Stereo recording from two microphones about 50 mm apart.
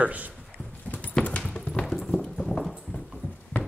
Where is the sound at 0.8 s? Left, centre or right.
Left.